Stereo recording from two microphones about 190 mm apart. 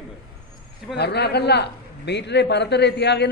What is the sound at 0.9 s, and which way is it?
A man's voice, 60° left (ahead or behind).